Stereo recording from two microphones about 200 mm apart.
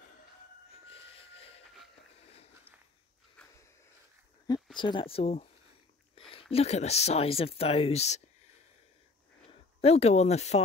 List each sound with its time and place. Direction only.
3.4 s a sound: 5° left (ahead or behind)
4.7 s speech: 25° left (ahead or behind)
9.5 s speech: 30° left (ahead or behind)